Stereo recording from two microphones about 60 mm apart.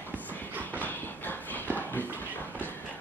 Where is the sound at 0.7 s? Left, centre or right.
Left.